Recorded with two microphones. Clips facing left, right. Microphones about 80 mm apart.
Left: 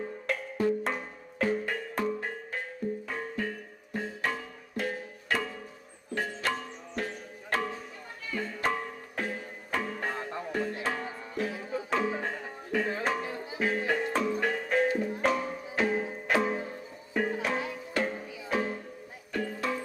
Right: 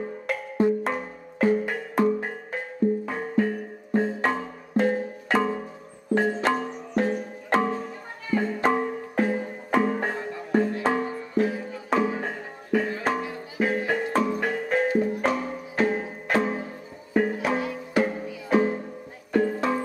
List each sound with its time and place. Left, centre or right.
0.0 s music: centre; by 11.6 s right
11.9 s music: centre
14.9 s music: right
15.2 s music: centre
17.1 s music: centre
18.5 s music: right